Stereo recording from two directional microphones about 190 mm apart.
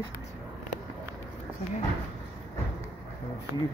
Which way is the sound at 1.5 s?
10° right (ahead or behind).